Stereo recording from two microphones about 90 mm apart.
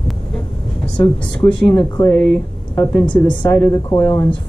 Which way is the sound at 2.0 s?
20° left (ahead or behind).